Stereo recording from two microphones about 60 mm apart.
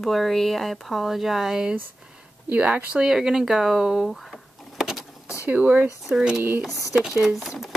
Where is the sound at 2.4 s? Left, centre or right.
Right.